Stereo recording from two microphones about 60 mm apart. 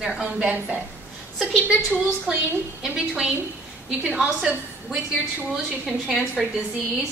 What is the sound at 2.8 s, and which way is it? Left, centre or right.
Speech, centre.